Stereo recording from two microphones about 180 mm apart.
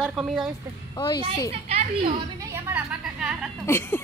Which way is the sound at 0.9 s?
25° left (ahead or behind).